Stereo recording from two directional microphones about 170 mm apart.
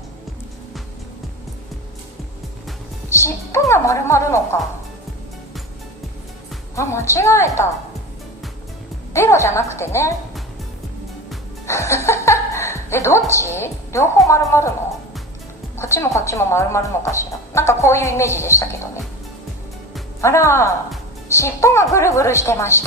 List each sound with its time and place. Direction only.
3.1 s speech: 15° left (ahead or behind)
6.7 s speech: 15° left (ahead or behind)
9.1 s speech: 15° left (ahead or behind)
11.6 s a woman's voice: 15° left (ahead or behind)
15.8 s speech: 15° left (ahead or behind)
20.2 s speech: 15° left (ahead or behind)